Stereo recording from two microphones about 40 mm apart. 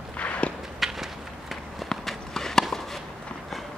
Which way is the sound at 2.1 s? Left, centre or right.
Centre.